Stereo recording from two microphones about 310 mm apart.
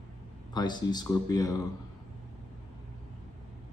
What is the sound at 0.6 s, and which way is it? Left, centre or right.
Speech, centre.